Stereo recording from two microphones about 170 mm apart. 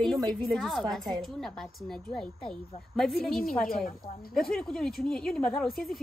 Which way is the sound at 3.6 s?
55° left (ahead or behind).